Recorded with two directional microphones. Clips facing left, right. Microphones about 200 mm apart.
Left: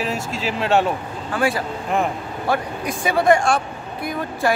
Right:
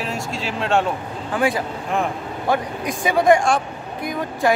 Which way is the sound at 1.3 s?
20° right (ahead or behind).